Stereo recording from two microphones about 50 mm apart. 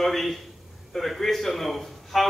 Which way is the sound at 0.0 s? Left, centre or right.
Centre.